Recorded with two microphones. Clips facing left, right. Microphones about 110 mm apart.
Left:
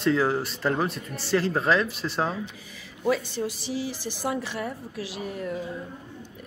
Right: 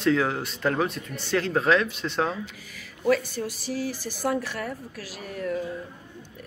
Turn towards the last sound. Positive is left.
turn(degrees=15)  # may be behind; listen again after turning